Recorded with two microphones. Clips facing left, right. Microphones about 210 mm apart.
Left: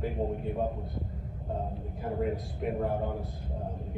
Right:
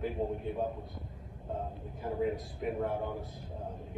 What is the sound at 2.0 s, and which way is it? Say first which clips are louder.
Speech: left 1 dB; centre (ahead or behind).